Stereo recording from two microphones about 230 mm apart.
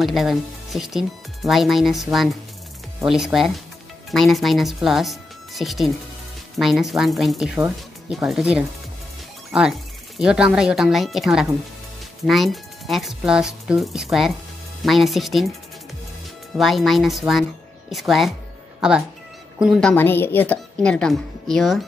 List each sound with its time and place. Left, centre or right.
0.0 s speech: centre
16.5 s speech: centre